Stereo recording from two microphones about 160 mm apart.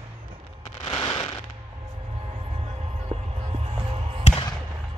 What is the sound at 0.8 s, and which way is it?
Fireworks, 35° left (ahead or behind).